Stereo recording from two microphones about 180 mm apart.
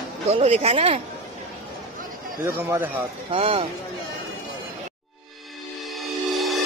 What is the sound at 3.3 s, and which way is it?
Speech, 30° right (ahead or behind).